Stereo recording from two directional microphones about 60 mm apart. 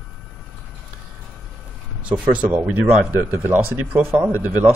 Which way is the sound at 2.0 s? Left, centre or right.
Right.